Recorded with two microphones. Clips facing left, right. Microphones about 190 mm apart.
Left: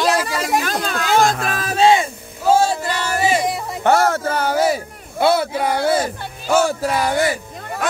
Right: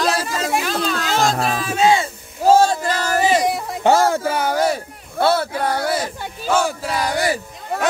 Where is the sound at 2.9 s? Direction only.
40° right (ahead or behind).